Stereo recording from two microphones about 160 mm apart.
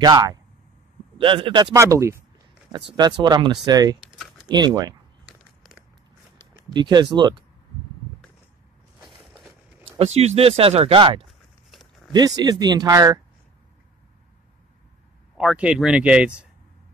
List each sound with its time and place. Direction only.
0.0 s speech: 25° right (ahead or behind)
2.7 s speech: 30° right (ahead or behind)
4.0 s a sound: 5° right (ahead or behind)
4.5 s speech: 25° right (ahead or behind)
6.3 s speech: 25° right (ahead or behind)
9.9 s speech: 40° right (ahead or behind)
11.2 s a sound: centre (ahead or behind)
12.1 s speech: 25° right (ahead or behind)
15.3 s speech: 5° right (ahead or behind)